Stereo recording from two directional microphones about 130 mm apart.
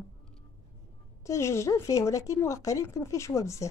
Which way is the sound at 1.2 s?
20° left (ahead or behind).